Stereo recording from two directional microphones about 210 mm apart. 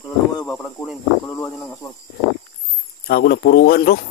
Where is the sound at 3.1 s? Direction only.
50° left (ahead or behind).